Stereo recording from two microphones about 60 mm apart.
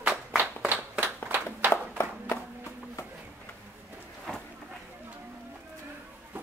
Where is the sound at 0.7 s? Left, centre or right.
Right.